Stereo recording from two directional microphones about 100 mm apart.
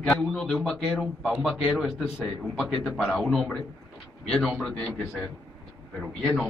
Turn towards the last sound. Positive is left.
turn(degrees=0)  # may be behind; listen again after turning